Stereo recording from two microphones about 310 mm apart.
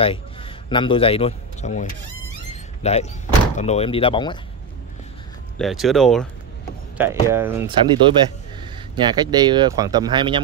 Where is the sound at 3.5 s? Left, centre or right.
Left.